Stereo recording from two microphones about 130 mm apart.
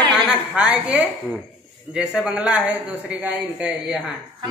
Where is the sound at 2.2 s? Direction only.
5° right (ahead or behind).